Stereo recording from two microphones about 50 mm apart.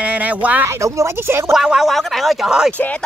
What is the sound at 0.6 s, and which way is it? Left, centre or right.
Speech, right.